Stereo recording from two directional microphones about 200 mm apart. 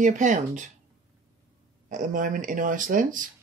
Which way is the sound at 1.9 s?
40° right (ahead or behind).